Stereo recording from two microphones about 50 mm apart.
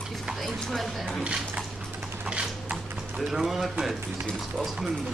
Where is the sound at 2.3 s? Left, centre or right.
Centre.